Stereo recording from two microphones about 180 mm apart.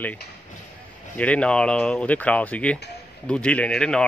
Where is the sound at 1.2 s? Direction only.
5° left (ahead or behind).